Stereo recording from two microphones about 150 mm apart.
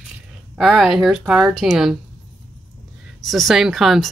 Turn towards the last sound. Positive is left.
turn(degrees=0)  # may be behind; listen again after turning